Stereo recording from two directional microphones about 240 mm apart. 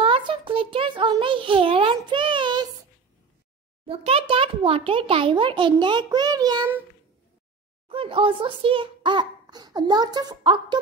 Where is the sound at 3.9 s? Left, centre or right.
Right.